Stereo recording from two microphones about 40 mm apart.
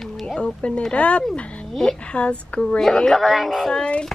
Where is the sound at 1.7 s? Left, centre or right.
Centre.